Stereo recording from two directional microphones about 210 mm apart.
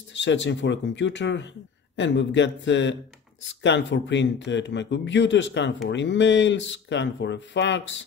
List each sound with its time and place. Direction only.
0.1 s speech: 60° left (ahead or behind)